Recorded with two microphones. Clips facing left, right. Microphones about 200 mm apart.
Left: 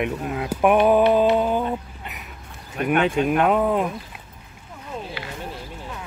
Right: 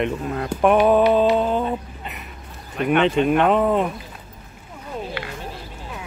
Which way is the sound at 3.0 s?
5° left (ahead or behind).